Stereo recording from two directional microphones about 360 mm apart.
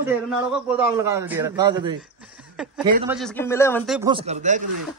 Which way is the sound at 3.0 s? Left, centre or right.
Centre.